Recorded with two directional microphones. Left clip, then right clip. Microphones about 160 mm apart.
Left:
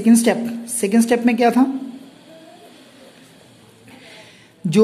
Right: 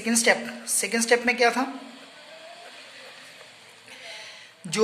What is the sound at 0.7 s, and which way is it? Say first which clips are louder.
Speech: left 5 dB; 20° left (ahead or behind).